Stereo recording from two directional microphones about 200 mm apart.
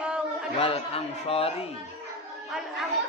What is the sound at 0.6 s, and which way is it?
Speech, 30° left (ahead or behind).